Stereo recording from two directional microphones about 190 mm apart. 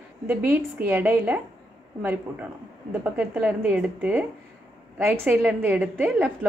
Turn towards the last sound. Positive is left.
turn(degrees=-10)  # may be behind; listen again after turning